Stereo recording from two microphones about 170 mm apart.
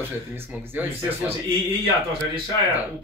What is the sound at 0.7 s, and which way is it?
Speech, 10° right (ahead or behind).